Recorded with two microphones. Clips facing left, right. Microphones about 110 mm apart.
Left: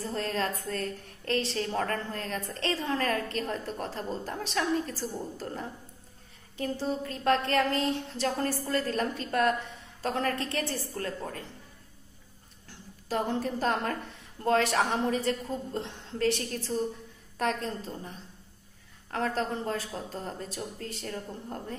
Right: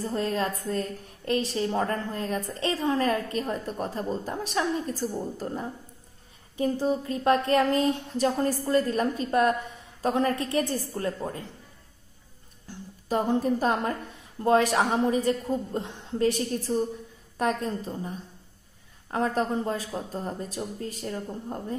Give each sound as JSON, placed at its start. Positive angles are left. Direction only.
{"t": 0.0, "sound": "speech", "side_deg": -15}
{"t": 12.6, "sound": "a woman's voice", "side_deg": -15}